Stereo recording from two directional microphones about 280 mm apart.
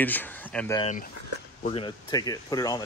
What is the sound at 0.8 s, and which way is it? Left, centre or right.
Speech, left.